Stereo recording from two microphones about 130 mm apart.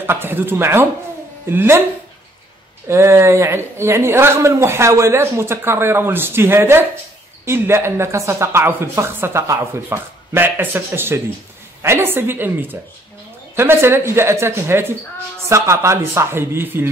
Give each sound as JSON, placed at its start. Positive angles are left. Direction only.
{"t": 0.0, "sound": "a woman's voice", "side_deg": -15}
{"t": 2.9, "sound": "a woman's voice", "side_deg": -20}